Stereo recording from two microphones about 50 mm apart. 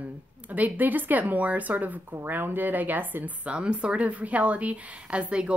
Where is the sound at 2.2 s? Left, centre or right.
Right.